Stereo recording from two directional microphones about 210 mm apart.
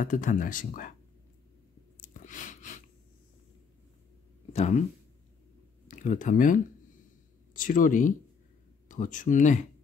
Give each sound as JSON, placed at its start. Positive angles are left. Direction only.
{"t": 0.0, "sound": "speech", "side_deg": 35}
{"t": 2.0, "sound": "chewing", "side_deg": 35}
{"t": 4.5, "sound": "speech", "side_deg": 30}
{"t": 5.9, "sound": "speech", "side_deg": 40}